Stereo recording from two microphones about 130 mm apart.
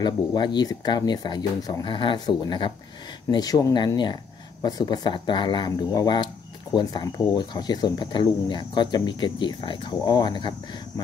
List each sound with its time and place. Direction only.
0.0 s speech: 35° left (ahead or behind)